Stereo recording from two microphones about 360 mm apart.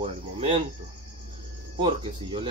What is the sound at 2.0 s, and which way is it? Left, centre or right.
Speech, centre.